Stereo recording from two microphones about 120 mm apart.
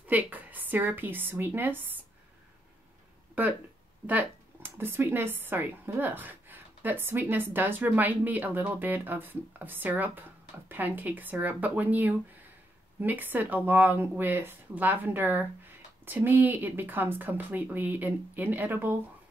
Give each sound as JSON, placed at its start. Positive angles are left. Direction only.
{"t": 0.0, "sound": "a woman's voice", "side_deg": -15}
{"t": 4.7, "sound": "a woman's voice", "side_deg": -20}